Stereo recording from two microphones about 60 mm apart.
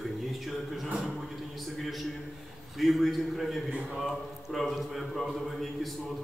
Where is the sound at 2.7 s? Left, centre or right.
Centre.